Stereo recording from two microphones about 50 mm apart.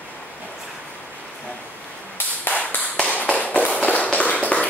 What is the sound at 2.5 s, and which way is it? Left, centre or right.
Tap, left.